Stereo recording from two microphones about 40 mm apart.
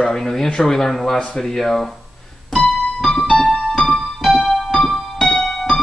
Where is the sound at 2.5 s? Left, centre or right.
Centre.